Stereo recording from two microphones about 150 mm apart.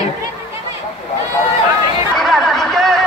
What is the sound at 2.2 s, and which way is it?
Chatter, centre (ahead or behind).